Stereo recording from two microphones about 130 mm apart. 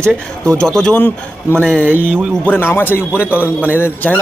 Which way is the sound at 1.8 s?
15° right (ahead or behind).